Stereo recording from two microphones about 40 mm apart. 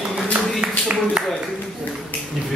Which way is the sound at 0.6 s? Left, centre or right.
Right.